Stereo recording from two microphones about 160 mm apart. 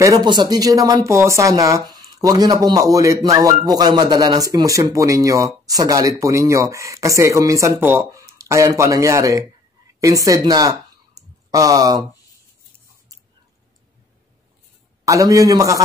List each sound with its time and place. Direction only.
0.0 s speech: 25° right (ahead or behind)
11.1 s clicking: 20° right (ahead or behind)
15.0 s speech: 20° right (ahead or behind)